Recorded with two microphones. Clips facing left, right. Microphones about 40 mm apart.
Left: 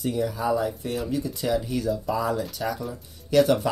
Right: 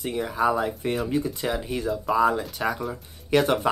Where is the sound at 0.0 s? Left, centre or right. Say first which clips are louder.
Right 2 dB; right.